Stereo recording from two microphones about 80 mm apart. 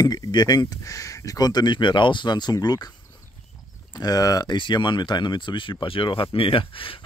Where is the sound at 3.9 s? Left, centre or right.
Left.